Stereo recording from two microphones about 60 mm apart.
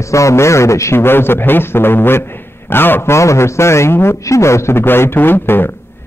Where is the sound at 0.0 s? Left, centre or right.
Left.